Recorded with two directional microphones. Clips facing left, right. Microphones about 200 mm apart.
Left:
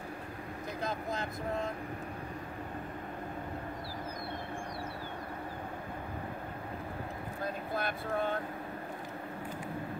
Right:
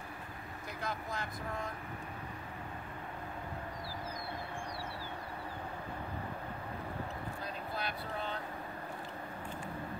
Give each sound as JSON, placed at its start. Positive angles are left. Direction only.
{"t": 0.8, "sound": "speech", "side_deg": 20}
{"t": 7.4, "sound": "speech", "side_deg": 50}